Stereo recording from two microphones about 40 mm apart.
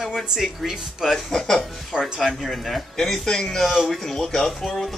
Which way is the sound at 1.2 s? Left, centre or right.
Centre.